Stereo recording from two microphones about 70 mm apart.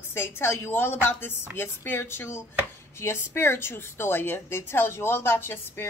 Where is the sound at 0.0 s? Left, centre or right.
Left.